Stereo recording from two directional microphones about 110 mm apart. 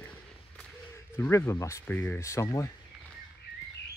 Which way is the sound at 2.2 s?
25° left (ahead or behind).